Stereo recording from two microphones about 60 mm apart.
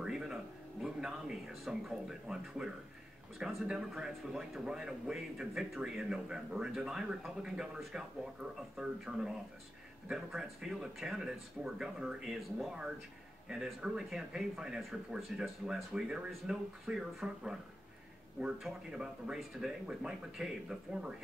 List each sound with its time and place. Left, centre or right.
0.0 s speech: centre
13.8 s speech: centre
18.9 s speech: centre